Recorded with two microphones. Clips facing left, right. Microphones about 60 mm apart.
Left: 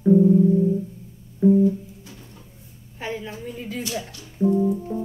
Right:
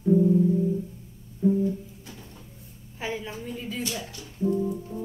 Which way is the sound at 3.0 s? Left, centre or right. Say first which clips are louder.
Left 2 dB; centre.